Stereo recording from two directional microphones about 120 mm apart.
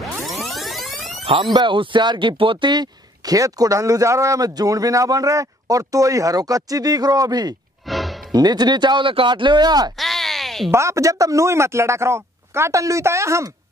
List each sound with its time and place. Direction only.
0.0 s music: centre (ahead or behind)
1.5 s speech: 40° right (ahead or behind)
7.9 s music: centre (ahead or behind)
8.3 s speech: 35° right (ahead or behind)
9.9 s a sound: centre (ahead or behind)
10.7 s speech: 25° right (ahead or behind)